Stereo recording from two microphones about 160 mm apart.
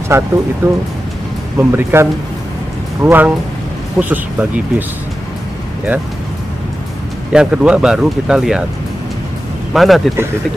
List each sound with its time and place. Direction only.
0.1 s speech: 15° right (ahead or behind)
7.3 s speech: 5° right (ahead or behind)
9.8 s speech: centre (ahead or behind)